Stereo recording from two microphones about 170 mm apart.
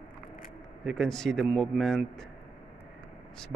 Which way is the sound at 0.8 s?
5° left (ahead or behind).